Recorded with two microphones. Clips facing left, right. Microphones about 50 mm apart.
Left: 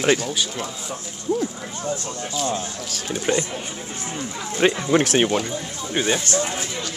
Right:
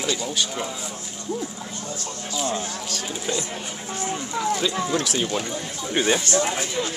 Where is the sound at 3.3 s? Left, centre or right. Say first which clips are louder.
Left 6 dB; left.